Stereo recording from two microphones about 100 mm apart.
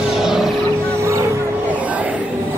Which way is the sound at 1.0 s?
30° right (ahead or behind).